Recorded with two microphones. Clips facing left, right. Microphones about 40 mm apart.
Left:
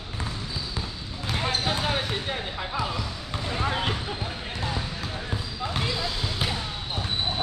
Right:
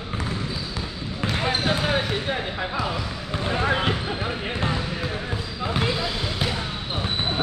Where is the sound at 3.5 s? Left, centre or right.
Right.